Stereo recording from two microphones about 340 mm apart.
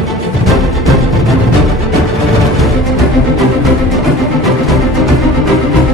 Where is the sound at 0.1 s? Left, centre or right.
Centre.